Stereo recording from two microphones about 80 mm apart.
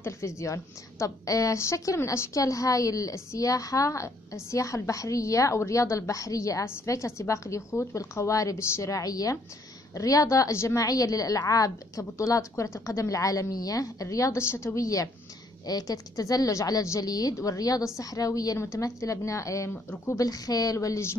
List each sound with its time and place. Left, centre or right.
0.0 s a woman's voice: left
19.7 s speech: left
20.2 s a woman's voice: left